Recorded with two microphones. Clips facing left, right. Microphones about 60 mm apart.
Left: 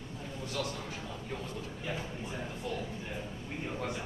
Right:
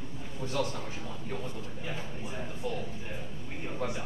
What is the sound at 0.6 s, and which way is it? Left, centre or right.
Speech, right.